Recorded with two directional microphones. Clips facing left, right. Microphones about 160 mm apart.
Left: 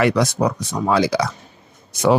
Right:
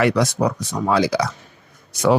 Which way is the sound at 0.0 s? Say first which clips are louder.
Left 1 dB; 20° left (ahead or behind).